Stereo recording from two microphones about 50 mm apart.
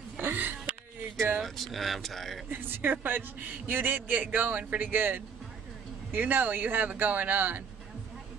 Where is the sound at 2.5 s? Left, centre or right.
Right.